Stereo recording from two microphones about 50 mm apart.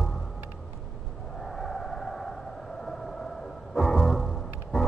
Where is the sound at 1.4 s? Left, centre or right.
Centre.